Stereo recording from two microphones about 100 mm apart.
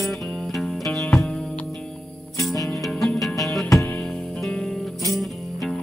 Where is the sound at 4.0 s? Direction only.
10° left (ahead or behind).